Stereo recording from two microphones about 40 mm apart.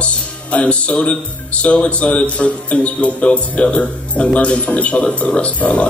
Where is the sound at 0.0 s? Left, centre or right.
Left.